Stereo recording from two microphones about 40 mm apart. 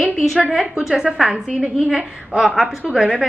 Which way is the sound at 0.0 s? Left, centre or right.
Centre.